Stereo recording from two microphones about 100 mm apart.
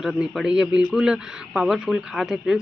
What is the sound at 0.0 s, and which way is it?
Speech, 5° right (ahead or behind).